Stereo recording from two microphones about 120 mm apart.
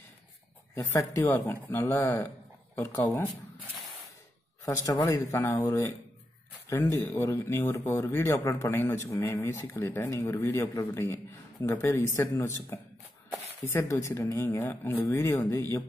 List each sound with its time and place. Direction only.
1.2 s speech: 15° left (ahead or behind)
4.6 s speech: 25° left (ahead or behind)
7.2 s speech: 20° left (ahead or behind)